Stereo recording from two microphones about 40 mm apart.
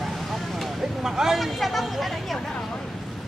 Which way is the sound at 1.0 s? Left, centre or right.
Centre.